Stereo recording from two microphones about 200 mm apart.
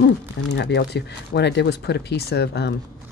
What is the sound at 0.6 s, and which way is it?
Speech, 55° left (ahead or behind).